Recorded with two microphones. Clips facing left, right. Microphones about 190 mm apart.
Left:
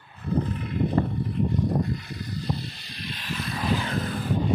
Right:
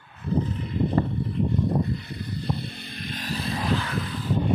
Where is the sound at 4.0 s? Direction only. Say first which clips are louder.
Left 1 dB; 50° left (ahead or behind).